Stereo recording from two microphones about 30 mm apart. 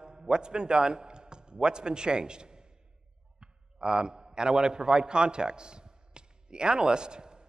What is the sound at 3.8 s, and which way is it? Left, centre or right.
A man's voice, right.